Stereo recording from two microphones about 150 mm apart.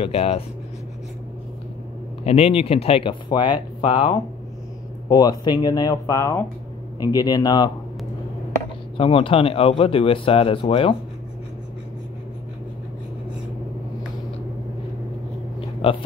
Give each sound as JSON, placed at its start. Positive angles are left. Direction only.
{"t": 0.0, "sound": "speech", "side_deg": 40}
{"t": 2.2, "sound": "speech", "side_deg": 40}
{"t": 5.1, "sound": "speech", "side_deg": 25}
{"t": 8.9, "sound": "speech", "side_deg": 35}
{"t": 15.8, "sound": "speech", "side_deg": 40}